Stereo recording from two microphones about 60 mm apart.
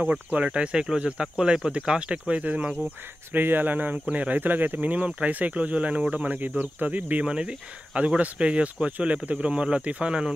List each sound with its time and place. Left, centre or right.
0.0 s speech: right